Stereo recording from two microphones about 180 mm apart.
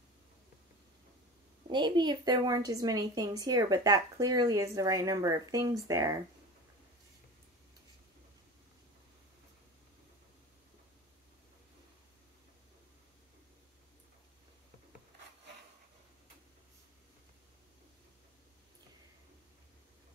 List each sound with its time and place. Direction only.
1.7 s a woman's voice: 25° right (ahead or behind)